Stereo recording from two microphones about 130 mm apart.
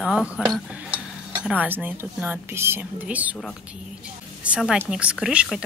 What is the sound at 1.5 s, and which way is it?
Speech, 15° right (ahead or behind).